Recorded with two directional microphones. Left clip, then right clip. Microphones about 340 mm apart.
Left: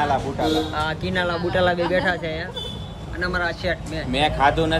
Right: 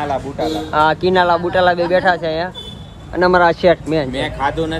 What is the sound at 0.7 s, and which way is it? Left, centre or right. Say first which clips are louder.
Speech: right 11 dB; centre.